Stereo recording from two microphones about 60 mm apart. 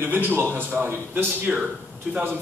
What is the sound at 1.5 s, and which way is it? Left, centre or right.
Speech, centre.